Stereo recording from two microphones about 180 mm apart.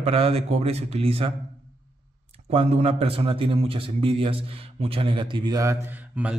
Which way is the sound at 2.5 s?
35° right (ahead or behind).